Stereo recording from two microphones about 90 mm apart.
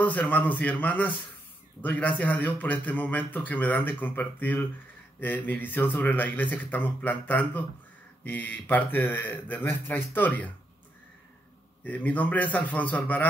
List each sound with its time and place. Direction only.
0.0 s a man's voice: 20° left (ahead or behind)
11.8 s a man's voice: 20° left (ahead or behind)